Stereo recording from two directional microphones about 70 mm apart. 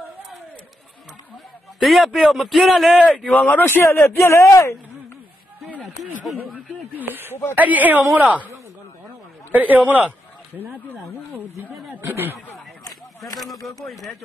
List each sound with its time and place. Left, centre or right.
1.8 s a man's voice: centre
3.3 s speech: left
5.7 s a sound: right
6.5 s a woman's voice: right
9.5 s a man's voice: right
11.9 s speech: right
13.4 s speech: centre